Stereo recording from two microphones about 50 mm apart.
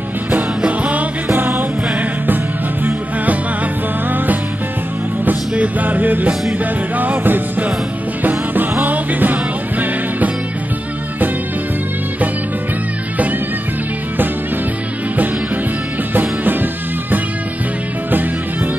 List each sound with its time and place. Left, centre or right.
0.6 s music: right
1.3 s music: right
5.5 s music: right
16.2 s music: right